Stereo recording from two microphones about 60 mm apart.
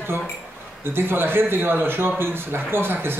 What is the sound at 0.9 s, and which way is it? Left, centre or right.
A man's voice, right.